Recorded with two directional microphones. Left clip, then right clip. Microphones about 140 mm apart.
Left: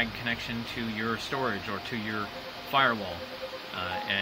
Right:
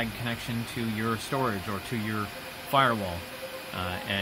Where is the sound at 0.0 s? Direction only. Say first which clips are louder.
Left 2 dB; 50° right (ahead or behind).